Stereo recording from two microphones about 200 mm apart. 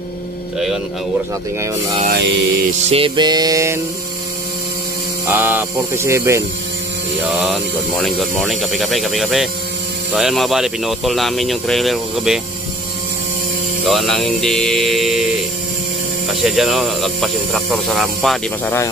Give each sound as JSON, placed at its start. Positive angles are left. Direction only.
{"t": 2.0, "sound": "mantra", "side_deg": -60}
{"t": 2.9, "sound": "mantra", "side_deg": -25}
{"t": 5.2, "sound": "speech", "side_deg": -10}
{"t": 7.2, "sound": "speech", "side_deg": -5}
{"t": 13.8, "sound": "speech", "side_deg": 0}
{"t": 16.3, "sound": "speech", "side_deg": 0}